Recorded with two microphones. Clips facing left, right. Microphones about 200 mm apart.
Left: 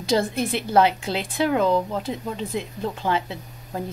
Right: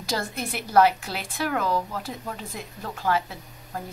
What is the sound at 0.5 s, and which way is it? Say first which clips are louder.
Speech: right 2 dB; 25° left (ahead or behind).